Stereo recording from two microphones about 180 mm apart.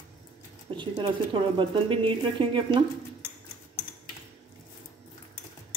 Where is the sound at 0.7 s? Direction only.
25° right (ahead or behind).